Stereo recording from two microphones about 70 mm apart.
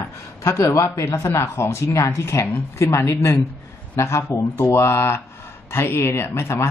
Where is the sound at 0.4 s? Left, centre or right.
Left.